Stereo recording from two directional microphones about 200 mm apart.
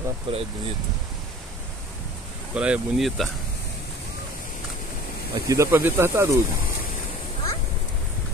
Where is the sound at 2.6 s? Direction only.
5° right (ahead or behind).